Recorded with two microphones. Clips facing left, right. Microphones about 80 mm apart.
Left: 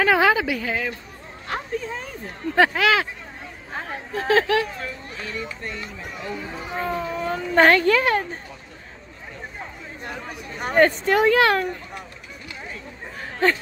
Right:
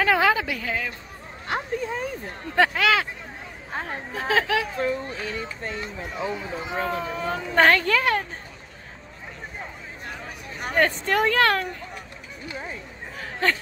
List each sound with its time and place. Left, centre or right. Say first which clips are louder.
0.0 s a woman's voice: left 2 dB; centre
1.5 s speech: right 1 dB; centre
2.5 s speech: left 2 dB; centre
4.7 s speech: right 7 dB; right
6.2 s speech: right 2 dB; centre
6.8 s speech: left 2 dB; centre
10.0 s speech: left 3 dB; centre
13.2 s a sound: left 3 dB; centre